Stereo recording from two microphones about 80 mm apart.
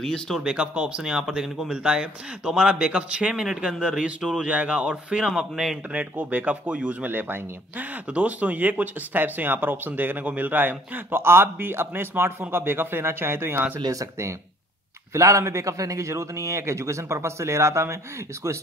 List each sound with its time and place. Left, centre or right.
0.0 s speech: centre
0.4 s speech: centre
5.9 s speech: centre
7.1 s speech: right
13.7 s speech: right
15.1 s a man's voice: right